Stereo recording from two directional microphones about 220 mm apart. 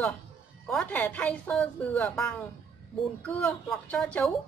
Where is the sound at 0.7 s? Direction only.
5° left (ahead or behind).